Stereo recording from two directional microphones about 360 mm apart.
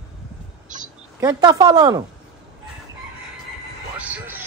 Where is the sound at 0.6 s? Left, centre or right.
Right.